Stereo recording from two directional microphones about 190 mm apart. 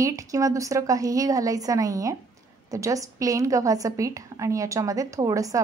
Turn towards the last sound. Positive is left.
turn(degrees=-15)  # may be behind; listen again after turning